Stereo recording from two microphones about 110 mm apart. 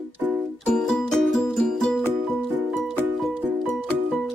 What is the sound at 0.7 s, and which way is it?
Music, 5° left (ahead or behind).